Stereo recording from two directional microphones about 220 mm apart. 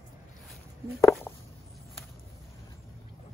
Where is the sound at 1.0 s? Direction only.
15° left (ahead or behind).